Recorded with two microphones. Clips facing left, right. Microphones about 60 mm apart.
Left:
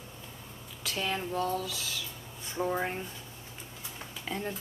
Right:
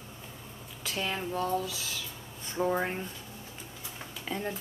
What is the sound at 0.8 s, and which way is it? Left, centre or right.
Speech, centre.